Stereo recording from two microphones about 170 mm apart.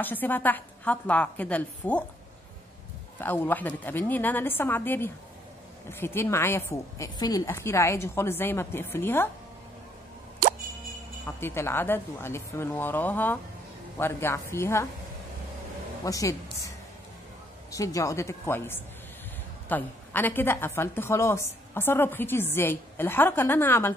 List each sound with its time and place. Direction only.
0.0 s a woman's voice: 10° left (ahead or behind)
3.2 s a woman's voice: 10° left (ahead or behind)
11.2 s a woman's voice: 15° left (ahead or behind)
16.1 s a woman's voice: 20° left (ahead or behind)